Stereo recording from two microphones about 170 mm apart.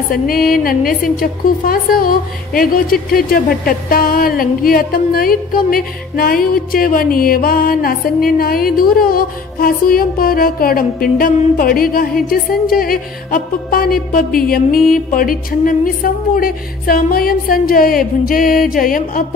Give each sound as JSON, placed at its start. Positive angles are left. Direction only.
{"t": 0.1, "sound": "a woman's voice", "side_deg": 60}